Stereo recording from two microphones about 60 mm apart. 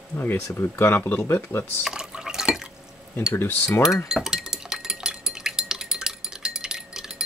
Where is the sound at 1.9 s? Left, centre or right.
Centre.